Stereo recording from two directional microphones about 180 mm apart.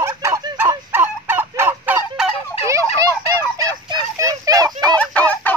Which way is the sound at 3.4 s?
20° right (ahead or behind).